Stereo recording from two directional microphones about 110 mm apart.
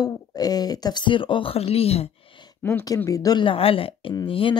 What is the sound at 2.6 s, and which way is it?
Speech, 15° left (ahead or behind).